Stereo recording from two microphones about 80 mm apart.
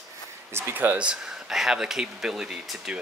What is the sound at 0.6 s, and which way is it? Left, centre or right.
Speech, right.